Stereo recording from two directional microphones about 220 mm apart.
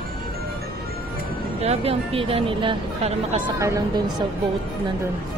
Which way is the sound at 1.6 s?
30° right (ahead or behind).